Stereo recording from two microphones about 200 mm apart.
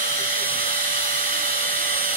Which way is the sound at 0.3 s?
40° right (ahead or behind).